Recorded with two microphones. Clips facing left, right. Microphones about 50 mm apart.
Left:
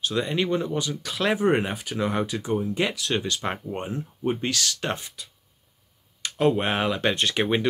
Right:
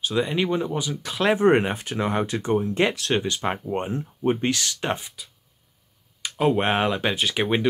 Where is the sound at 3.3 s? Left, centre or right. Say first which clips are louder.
Right 3 dB; centre.